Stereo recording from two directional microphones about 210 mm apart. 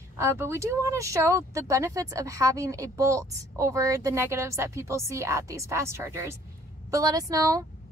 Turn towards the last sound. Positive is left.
turn(degrees=-15)  # may be behind; listen again after turning